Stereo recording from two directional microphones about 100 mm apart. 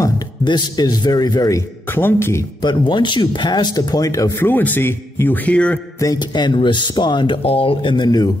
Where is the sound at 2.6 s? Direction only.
50° left (ahead or behind).